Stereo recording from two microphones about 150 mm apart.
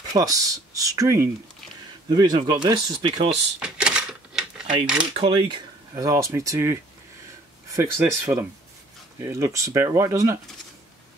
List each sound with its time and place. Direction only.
0.1 s speech: 25° right (ahead or behind)
3.6 s coin: 5° right (ahead or behind)
5.1 s speech: 35° right (ahead or behind)
5.9 s speech: 20° right (ahead or behind)